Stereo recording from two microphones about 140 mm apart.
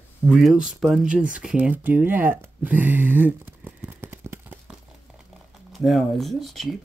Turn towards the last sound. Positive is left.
turn(degrees=0)  # may be behind; listen again after turning